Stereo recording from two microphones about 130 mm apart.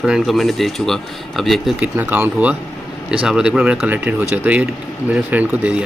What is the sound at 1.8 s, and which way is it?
Speech, 10° right (ahead or behind).